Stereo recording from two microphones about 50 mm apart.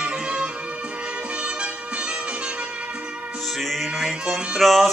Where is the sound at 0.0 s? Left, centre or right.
Right.